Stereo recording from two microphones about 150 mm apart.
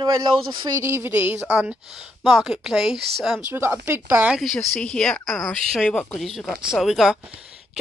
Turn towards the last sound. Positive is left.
turn(degrees=-5)  # may be behind; listen again after turning